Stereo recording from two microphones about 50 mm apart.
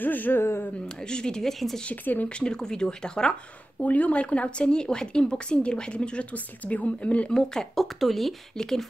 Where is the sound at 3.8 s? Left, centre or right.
Left.